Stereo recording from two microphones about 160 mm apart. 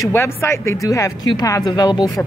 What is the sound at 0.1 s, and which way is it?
Speech, 15° left (ahead or behind).